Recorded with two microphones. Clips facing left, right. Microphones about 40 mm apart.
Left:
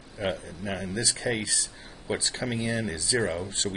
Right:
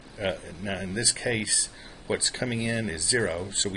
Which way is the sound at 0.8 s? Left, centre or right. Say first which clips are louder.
Even; centre.